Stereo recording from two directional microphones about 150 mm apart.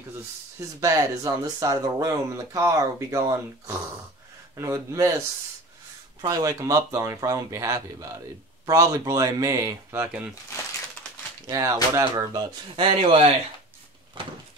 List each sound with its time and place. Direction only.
0.7 s speech: 20° right (ahead or behind)
6.2 s speech: 20° right (ahead or behind)
11.4 s speech: 20° right (ahead or behind)
12.8 s speech: 40° right (ahead or behind)